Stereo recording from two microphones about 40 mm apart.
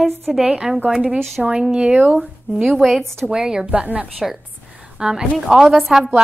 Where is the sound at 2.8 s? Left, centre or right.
Centre.